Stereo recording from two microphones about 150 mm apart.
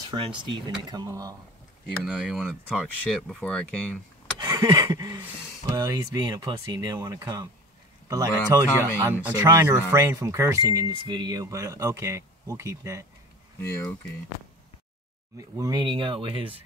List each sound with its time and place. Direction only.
0.1 s speech: 30° right (ahead or behind)
2.0 s speech: 5° right (ahead or behind)
4.4 s a sound: 25° right (ahead or behind)
5.8 s speech: 25° right (ahead or behind)
13.6 s speech: 15° left (ahead or behind)
15.3 s speech: 25° right (ahead or behind)